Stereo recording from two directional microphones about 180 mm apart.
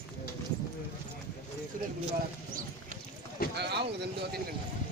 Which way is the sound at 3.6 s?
65° right (ahead or behind).